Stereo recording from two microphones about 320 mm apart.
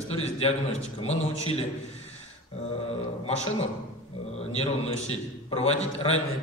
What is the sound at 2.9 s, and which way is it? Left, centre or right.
A man's voice, centre.